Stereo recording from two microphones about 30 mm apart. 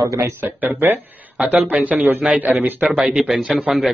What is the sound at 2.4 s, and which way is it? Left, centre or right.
Speech, right.